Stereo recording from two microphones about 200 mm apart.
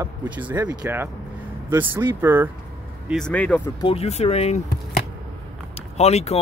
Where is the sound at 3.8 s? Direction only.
30° left (ahead or behind).